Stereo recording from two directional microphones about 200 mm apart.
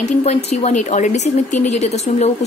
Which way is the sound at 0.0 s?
35° left (ahead or behind).